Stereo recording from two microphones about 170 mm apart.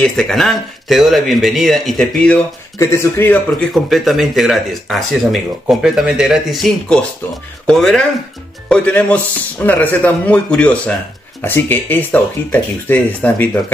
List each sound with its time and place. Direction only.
0.0 s speech: 5° left (ahead or behind)
2.8 s speech: 15° left (ahead or behind)
3.7 s speech: centre (ahead or behind)